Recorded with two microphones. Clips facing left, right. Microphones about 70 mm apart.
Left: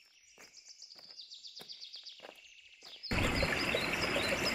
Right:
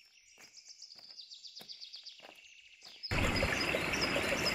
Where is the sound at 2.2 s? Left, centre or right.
Centre.